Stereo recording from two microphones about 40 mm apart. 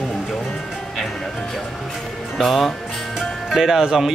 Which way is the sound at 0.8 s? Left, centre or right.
Centre.